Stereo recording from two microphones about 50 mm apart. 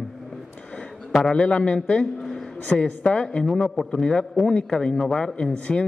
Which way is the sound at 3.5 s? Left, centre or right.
Centre.